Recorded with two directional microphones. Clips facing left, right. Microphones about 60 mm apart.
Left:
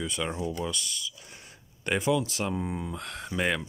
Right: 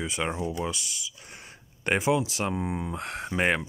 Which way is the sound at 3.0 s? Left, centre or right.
Right.